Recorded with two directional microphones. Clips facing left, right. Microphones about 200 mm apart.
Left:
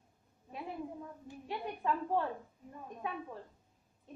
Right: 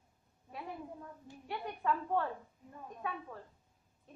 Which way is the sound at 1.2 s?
15° left (ahead or behind).